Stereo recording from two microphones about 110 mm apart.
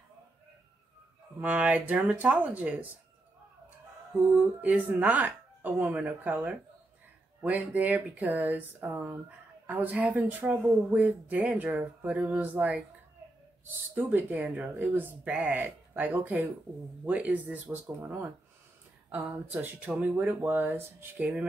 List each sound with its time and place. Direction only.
1.4 s speech: 15° right (ahead or behind)
4.3 s speech: 15° right (ahead or behind)
14.3 s speech: 10° right (ahead or behind)